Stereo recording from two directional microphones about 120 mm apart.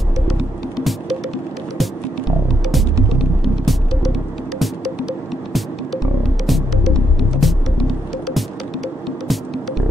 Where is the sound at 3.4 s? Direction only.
Centre (ahead or behind).